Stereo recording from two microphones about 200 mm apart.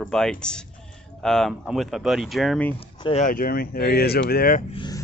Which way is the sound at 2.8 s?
30° left (ahead or behind).